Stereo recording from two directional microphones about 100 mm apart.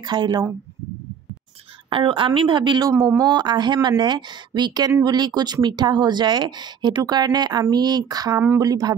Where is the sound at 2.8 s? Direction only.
30° right (ahead or behind).